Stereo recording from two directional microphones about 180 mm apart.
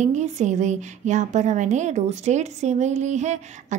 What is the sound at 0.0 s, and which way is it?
A woman's voice, 40° right (ahead or behind).